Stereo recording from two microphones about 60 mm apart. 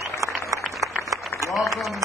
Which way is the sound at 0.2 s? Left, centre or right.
Right.